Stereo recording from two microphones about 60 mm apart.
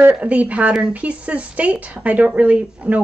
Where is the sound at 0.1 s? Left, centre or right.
Right.